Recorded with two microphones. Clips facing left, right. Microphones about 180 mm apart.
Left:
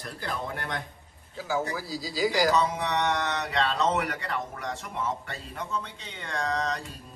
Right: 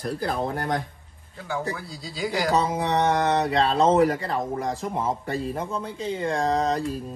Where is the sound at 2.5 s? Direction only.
35° right (ahead or behind).